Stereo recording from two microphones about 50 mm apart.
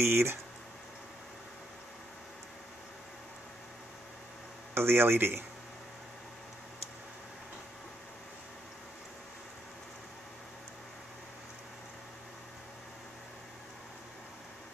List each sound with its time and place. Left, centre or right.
0.0 s speech: right
4.7 s speech: right